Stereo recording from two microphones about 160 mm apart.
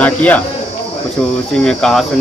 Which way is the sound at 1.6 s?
5° left (ahead or behind).